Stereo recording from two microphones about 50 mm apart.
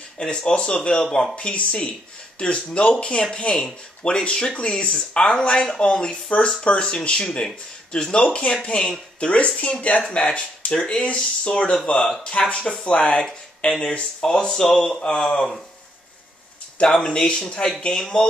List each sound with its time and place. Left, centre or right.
0.2 s speech: centre
16.7 s speech: left